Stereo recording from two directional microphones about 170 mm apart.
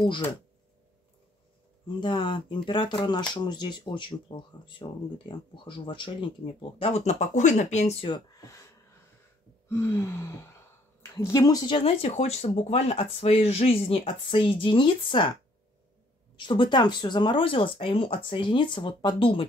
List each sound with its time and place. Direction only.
0.0 s speech: 30° left (ahead or behind)
2.0 s speech: 25° left (ahead or behind); by 8.1 s 40° left (ahead or behind)
8.4 s speech: 15° left (ahead or behind)
9.7 s gasp: 15° left (ahead or behind)
11.1 s speech: 15° left (ahead or behind)
16.3 s speech: 30° left (ahead or behind)